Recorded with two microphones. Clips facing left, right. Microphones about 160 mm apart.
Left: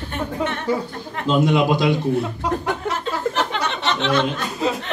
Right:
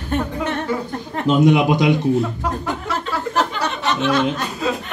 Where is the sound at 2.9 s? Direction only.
55° left (ahead or behind).